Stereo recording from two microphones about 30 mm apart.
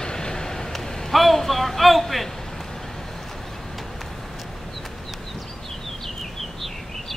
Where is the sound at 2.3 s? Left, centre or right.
Centre.